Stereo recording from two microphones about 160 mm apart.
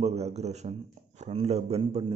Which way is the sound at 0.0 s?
40° right (ahead or behind).